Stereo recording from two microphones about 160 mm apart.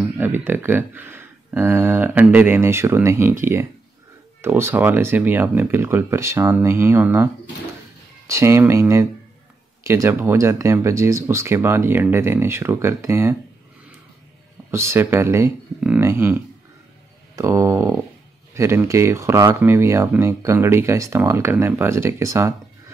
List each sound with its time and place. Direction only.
0.2 s speech: 15° right (ahead or behind)
8.3 s speech: 15° right (ahead or behind)
14.7 s speech: 15° right (ahead or behind)
17.4 s a sound: 20° right (ahead or behind)
18.5 s speech: 15° right (ahead or behind)